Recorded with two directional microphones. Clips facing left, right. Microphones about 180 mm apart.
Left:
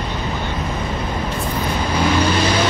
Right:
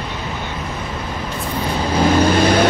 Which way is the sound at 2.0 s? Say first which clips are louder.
Right 4 dB; 45° right (ahead or behind).